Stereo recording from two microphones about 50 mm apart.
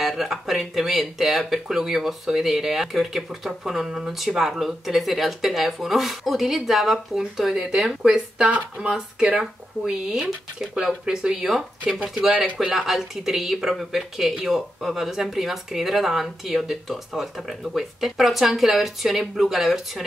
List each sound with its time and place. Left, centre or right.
0.0 s speech: centre; by 12.1 s right
12.7 s speech: centre